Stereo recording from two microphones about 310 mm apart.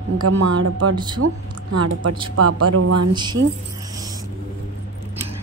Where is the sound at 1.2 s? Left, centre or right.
Right.